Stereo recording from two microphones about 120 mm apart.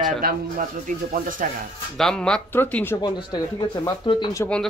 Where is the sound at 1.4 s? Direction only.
90° right.